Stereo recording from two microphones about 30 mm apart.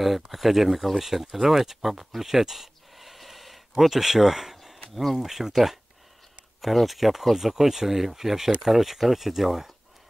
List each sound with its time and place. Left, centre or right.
0.0 s speech: centre
4.6 s a sound: centre
5.1 s speech: centre